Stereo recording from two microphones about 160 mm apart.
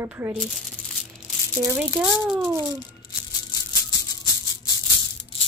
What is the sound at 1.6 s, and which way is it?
Speech, 15° right (ahead or behind).